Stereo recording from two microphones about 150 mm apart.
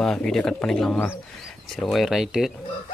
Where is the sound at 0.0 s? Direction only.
5° left (ahead or behind).